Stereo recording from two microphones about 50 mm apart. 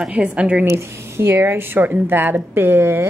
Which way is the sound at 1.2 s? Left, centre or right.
Right.